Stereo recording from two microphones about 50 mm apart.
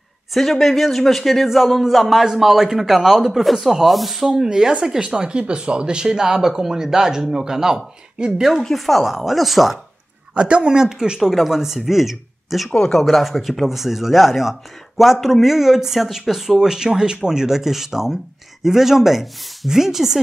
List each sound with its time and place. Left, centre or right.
0.3 s speech: centre
10.3 s speech: centre
12.7 s speech: centre
13.0 s speech: centre